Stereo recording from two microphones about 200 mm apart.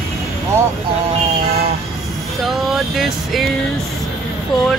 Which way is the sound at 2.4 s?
Centre (ahead or behind).